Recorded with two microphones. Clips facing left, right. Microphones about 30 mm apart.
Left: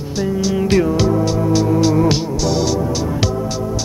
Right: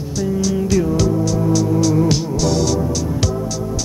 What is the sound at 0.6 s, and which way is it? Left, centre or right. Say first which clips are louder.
Music: left 4 dB; left.